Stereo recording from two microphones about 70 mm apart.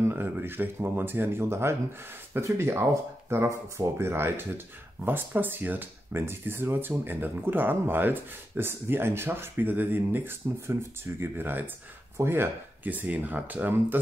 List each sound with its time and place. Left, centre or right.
0.1 s speech: right